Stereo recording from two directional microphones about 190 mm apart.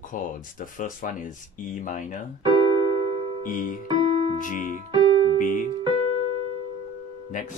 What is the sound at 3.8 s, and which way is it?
Piano, 30° right (ahead or behind).